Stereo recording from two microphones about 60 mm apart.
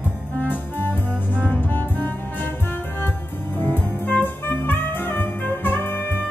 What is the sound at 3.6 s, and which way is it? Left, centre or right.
Music, left.